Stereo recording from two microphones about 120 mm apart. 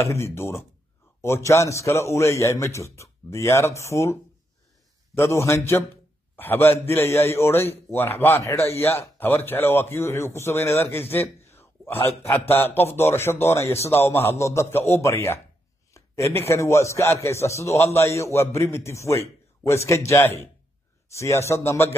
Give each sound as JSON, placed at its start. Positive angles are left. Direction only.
{"t": 0.0, "sound": "a man's voice", "side_deg": 20}